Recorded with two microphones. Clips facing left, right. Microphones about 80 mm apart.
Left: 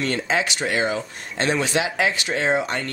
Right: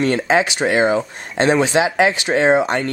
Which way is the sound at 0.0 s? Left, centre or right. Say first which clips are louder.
Right 7 dB; centre.